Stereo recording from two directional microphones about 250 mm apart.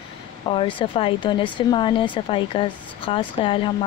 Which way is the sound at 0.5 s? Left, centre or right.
Centre.